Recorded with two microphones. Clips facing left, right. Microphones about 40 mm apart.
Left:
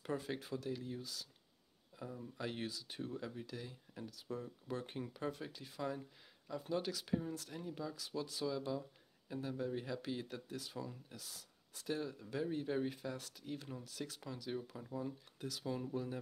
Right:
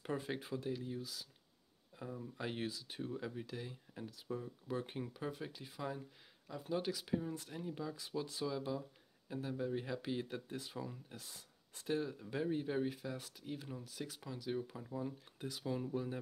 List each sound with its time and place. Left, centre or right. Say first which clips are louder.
0.0 s speech: right 1 dB; centre
11.1 s speech: even; right
12.0 s speech: right 1 dB; centre
15.3 s speech: even; centre
15.6 s speech: right 2 dB; centre